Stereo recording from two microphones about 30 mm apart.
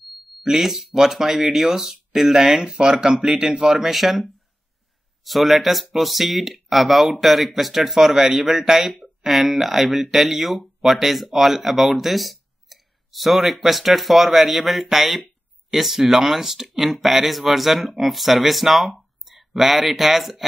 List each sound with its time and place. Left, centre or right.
0.6 s speech: centre
2.6 s speech: right; by 20.4 s centre